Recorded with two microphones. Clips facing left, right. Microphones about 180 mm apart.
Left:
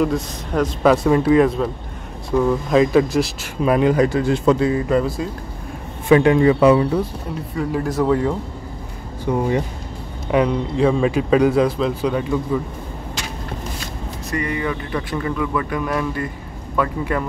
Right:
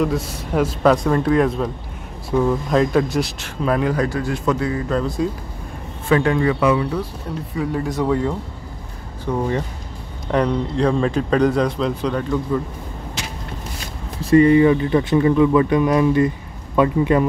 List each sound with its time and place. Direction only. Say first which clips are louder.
0.0 s speech: left 1 dB; 5° right (ahead or behind)
3.6 s speech: left 4 dB; 20° left (ahead or behind)
6.0 s speech: left 4 dB; 20° left (ahead or behind)
7.5 s speech: left 1 dB; centre (ahead or behind)
9.2 s a man's voice: left 2 dB; 10° left (ahead or behind)
14.2 s speech: right 12 dB; 30° right (ahead or behind)